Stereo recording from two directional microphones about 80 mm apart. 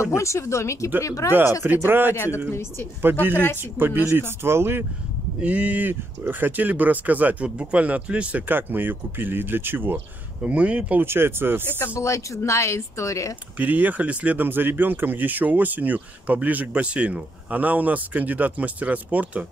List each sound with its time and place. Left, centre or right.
0.0 s speech: left
1.6 s speech: right
2.1 s speech: left
3.0 s speech: right
5.4 s speech: centre
10.4 s speech: centre
11.1 s speech: right
12.0 s speech: left
13.6 s speech: right